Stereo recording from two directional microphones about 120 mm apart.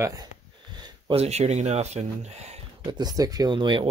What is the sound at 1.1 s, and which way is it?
Speech, 65° right (ahead or behind).